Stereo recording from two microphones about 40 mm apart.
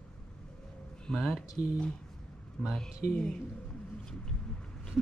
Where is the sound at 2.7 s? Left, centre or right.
Centre.